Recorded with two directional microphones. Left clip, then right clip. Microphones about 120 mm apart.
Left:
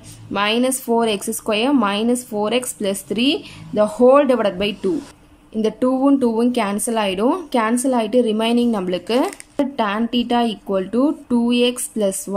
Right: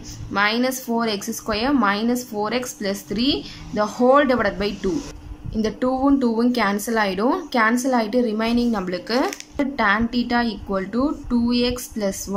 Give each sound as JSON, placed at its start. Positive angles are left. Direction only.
{"t": 0.3, "sound": "a woman's voice", "side_deg": 25}